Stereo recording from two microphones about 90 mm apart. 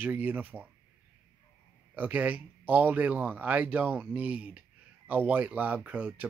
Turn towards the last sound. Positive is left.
turn(degrees=-15)  # may be behind; listen again after turning